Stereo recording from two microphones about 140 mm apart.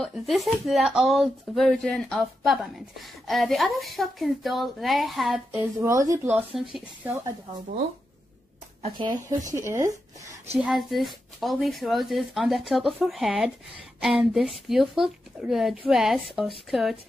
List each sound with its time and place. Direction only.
0.0 s speech: centre (ahead or behind)
5.8 s speech: 20° right (ahead or behind)
6.3 s speech: 5° right (ahead or behind)
8.8 s speech: 35° right (ahead or behind)
9.5 s speech: 20° right (ahead or behind)
10.6 s speech: centre (ahead or behind)